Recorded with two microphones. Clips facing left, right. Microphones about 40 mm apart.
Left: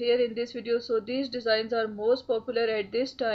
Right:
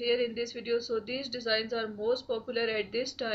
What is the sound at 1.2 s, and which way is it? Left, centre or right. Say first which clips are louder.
Speech: left 6 dB; centre.